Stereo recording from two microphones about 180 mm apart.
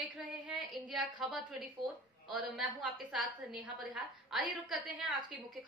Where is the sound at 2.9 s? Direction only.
5° right (ahead or behind).